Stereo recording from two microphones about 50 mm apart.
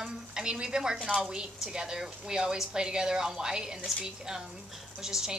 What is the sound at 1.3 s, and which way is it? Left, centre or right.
A woman's voice, centre.